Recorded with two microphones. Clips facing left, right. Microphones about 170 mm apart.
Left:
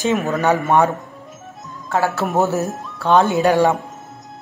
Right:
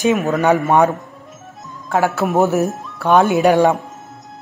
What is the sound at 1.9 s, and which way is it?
Speech, 15° right (ahead or behind).